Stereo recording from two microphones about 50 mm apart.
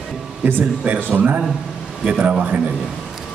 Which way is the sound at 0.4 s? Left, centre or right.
Right.